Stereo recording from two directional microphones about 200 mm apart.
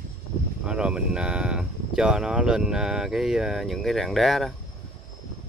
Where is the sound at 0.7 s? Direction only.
5° right (ahead or behind).